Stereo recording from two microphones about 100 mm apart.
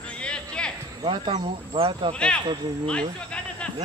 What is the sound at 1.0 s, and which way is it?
Speech, 60° right (ahead or behind).